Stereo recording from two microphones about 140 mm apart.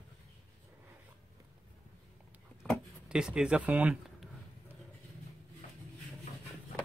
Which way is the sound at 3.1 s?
5° right (ahead or behind).